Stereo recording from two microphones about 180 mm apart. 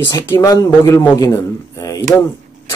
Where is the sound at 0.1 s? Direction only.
20° left (ahead or behind).